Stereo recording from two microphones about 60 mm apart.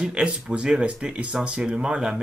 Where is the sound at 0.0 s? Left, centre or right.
Centre.